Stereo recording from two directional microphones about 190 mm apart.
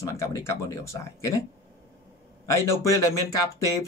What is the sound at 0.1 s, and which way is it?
Speech, 15° left (ahead or behind).